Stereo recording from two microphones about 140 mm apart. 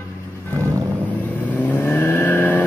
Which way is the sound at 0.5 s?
20° right (ahead or behind).